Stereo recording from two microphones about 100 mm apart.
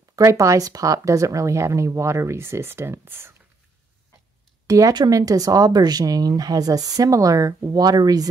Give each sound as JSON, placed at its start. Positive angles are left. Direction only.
{"t": 0.1, "sound": "speech", "side_deg": -30}
{"t": 4.6, "sound": "speech", "side_deg": -35}